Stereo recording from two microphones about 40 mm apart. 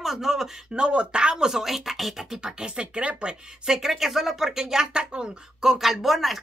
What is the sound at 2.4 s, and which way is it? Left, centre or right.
Speech, centre.